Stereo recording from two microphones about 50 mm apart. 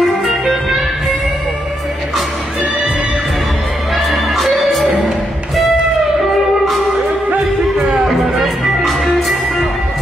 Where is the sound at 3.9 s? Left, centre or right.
Centre.